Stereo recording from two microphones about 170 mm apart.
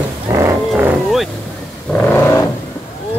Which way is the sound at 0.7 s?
Centre (ahead or behind).